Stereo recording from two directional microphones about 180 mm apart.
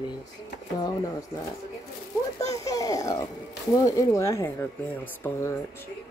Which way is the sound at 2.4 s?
20° left (ahead or behind).